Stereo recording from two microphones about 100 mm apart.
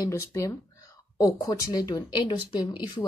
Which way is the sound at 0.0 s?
30° left (ahead or behind).